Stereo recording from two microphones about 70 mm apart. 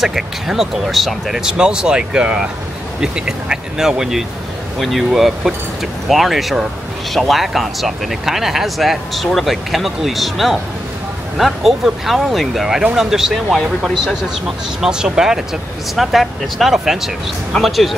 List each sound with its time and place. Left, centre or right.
0.0 s speech: centre
14.8 s speech: centre